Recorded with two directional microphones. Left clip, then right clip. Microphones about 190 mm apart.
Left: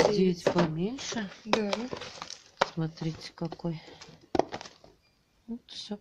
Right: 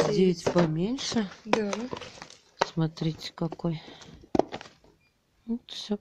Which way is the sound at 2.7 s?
40° right (ahead or behind).